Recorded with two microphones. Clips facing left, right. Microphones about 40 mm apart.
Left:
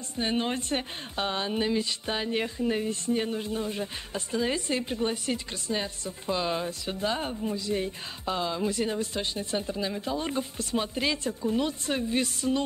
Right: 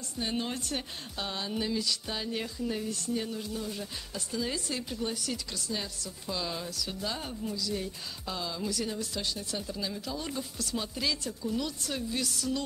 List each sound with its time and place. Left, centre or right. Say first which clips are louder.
0.1 s a woman's voice: left 5 dB; left